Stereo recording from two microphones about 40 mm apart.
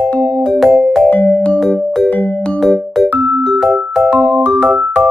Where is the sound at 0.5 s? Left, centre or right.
Centre.